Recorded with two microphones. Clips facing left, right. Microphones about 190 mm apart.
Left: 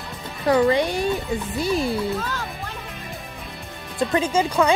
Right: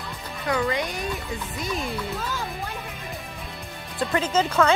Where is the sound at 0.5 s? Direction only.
30° left (ahead or behind).